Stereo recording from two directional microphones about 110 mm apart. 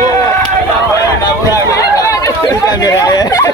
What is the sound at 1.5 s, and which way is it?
Chatter, 30° left (ahead or behind).